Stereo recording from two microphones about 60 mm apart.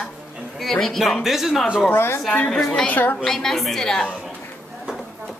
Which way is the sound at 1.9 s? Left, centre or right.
Left.